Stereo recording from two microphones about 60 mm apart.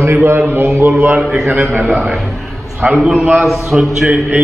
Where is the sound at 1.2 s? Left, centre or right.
Centre.